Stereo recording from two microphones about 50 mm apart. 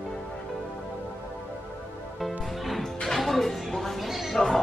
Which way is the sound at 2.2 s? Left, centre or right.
Centre.